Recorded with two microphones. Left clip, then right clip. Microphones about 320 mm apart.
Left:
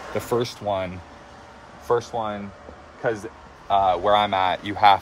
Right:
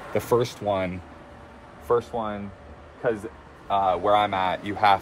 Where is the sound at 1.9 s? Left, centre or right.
Left.